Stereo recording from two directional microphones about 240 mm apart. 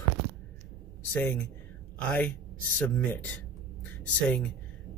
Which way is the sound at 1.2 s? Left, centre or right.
Centre.